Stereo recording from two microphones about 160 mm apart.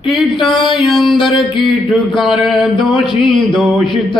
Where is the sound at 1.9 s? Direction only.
Centre (ahead or behind).